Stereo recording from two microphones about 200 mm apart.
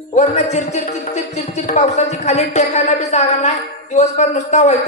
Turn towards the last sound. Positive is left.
turn(degrees=35)  # may be behind; listen again after turning